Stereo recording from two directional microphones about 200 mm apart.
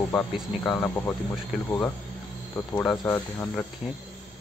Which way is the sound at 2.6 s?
10° left (ahead or behind).